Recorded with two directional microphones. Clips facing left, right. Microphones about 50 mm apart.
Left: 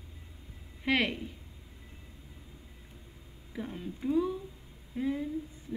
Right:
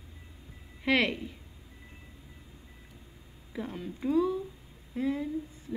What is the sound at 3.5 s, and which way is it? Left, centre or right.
Speech, centre.